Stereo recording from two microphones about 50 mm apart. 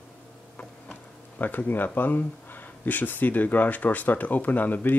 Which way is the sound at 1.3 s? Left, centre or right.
Left.